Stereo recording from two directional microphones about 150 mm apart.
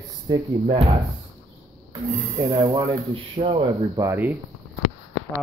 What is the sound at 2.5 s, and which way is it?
Speech, 25° right (ahead or behind).